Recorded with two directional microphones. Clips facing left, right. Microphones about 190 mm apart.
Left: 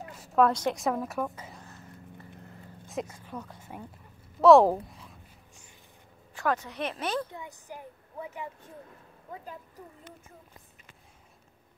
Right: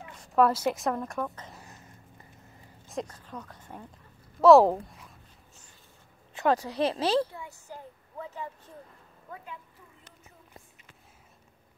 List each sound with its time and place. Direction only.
0.1 s speech: 5° left (ahead or behind)
2.9 s speech: 5° left (ahead or behind)
6.3 s speech: 30° right (ahead or behind)
7.2 s a woman's voice: 20° left (ahead or behind)
9.4 s speech: 40° left (ahead or behind)